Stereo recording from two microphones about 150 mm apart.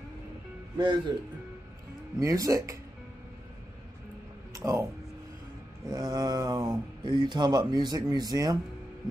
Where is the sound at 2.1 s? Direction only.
20° right (ahead or behind).